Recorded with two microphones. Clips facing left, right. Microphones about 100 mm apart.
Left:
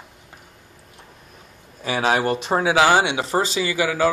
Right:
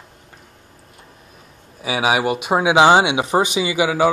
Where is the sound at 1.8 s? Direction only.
10° right (ahead or behind).